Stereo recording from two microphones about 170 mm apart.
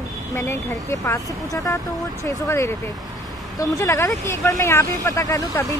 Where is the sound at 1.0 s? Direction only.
15° left (ahead or behind).